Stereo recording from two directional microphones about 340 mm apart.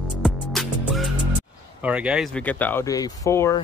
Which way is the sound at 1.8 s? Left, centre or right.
Centre.